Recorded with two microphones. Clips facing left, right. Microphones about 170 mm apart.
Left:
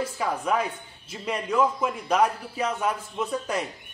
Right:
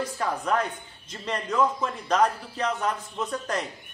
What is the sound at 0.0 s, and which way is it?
Speech, 10° left (ahead or behind).